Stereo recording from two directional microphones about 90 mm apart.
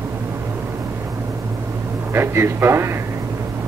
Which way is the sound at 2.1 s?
30° right (ahead or behind).